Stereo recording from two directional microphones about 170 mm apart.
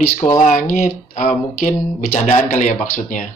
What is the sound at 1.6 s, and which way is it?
Speech, 50° left (ahead or behind).